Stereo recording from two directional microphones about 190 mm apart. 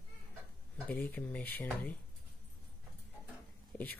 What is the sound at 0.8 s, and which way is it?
Speech, 10° left (ahead or behind).